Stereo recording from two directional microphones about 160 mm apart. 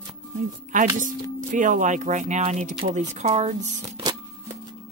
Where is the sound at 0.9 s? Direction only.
55° right (ahead or behind).